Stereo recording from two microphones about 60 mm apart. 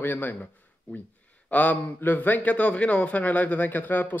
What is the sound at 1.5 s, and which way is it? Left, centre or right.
A man's voice, left.